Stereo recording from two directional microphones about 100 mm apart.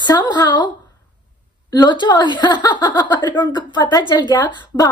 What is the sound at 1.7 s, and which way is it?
A woman's voice, 45° left (ahead or behind).